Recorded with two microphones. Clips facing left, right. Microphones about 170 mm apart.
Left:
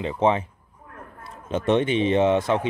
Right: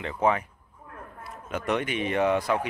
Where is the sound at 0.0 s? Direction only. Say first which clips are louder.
Left 4 dB; 25° left (ahead or behind).